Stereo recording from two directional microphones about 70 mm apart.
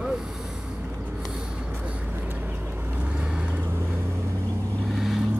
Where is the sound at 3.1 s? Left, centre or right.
Centre.